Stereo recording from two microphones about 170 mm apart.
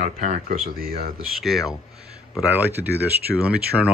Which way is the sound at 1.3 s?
Centre (ahead or behind).